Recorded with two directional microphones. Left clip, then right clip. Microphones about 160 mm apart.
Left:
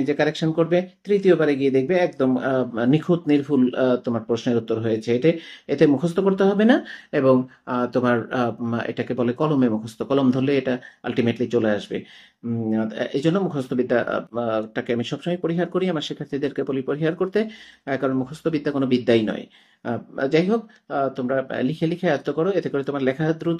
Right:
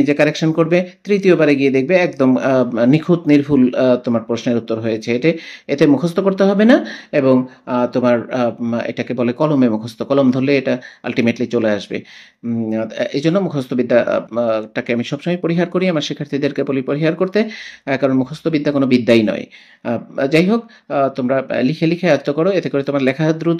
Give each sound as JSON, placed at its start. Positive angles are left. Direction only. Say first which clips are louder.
{"t": 0.0, "sound": "speech", "louder": "right 7 dB", "side_deg": -35}